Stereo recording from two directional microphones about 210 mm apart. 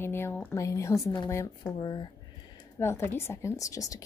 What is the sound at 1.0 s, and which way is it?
Speech, 15° left (ahead or behind).